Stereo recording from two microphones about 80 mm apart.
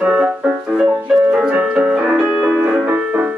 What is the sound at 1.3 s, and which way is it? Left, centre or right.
Music, centre.